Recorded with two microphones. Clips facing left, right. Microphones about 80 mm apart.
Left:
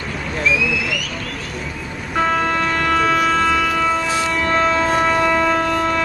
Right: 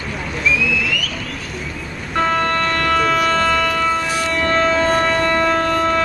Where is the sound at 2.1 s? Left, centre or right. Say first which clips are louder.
Even; centre.